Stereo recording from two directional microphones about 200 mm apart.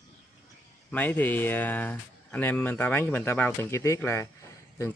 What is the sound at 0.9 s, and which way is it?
Speech, 10° left (ahead or behind).